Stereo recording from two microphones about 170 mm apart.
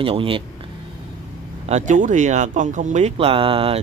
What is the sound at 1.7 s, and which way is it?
Speech, 45° right (ahead or behind).